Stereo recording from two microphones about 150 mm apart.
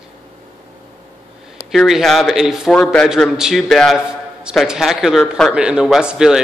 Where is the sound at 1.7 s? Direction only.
Centre (ahead or behind).